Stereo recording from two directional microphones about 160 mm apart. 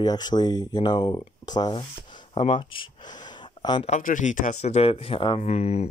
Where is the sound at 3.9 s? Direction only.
55° left (ahead or behind).